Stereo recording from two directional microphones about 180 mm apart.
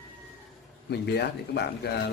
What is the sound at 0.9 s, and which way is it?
A man's voice, 65° left (ahead or behind).